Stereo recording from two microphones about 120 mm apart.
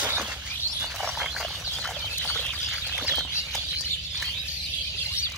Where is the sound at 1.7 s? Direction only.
5° left (ahead or behind).